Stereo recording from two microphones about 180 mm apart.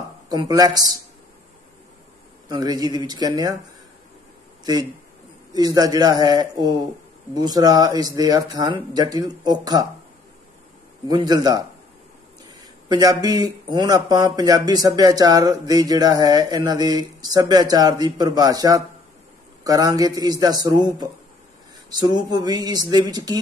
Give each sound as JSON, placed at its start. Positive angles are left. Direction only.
{"t": 0.3, "sound": "speech", "side_deg": -20}
{"t": 2.4, "sound": "speech", "side_deg": -20}
{"t": 5.5, "sound": "speech", "side_deg": -20}
{"t": 11.1, "sound": "speech", "side_deg": -20}
{"t": 12.8, "sound": "speech", "side_deg": -20}